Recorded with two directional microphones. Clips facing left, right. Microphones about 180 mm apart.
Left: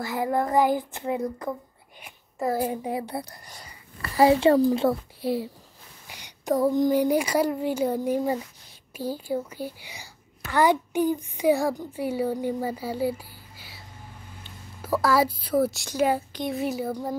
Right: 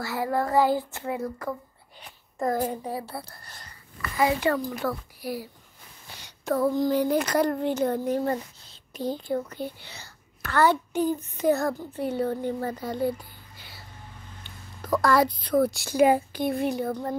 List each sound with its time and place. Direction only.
0.0 s a child's voice: 20° left (ahead or behind)
4.0 s a child's voice: 30° left (ahead or behind)
6.0 s a woman's voice: 15° left (ahead or behind)